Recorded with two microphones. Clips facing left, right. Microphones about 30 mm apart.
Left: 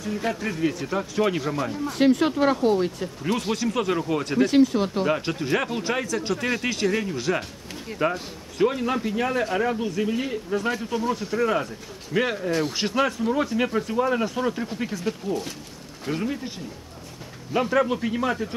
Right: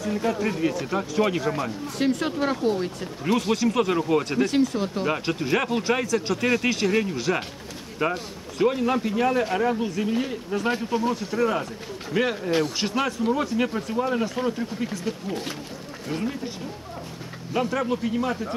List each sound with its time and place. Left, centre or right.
0.2 s a man's voice: left
0.6 s speech: centre
2.0 s speech: centre
3.0 s speech: centre
4.5 s speech: centre
5.0 s speech: centre
11.1 s speech: centre
17.6 s speech: centre